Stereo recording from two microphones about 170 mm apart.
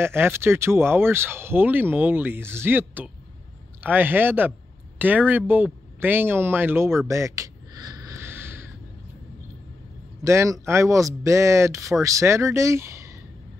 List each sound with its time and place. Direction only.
0.0 s speech: 15° right (ahead or behind)
7.1 s a sound: 15° right (ahead or behind)
10.2 s speech: 15° right (ahead or behind)